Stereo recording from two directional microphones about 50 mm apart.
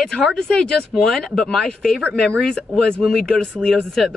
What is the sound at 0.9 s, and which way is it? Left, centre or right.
Speech, centre.